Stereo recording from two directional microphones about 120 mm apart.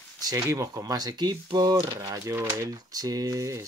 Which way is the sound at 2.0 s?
25° right (ahead or behind).